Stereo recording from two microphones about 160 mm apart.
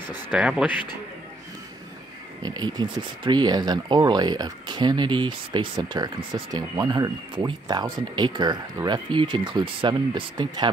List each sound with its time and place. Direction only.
0.3 s speech: 5° right (ahead or behind)
2.4 s speech: 25° right (ahead or behind)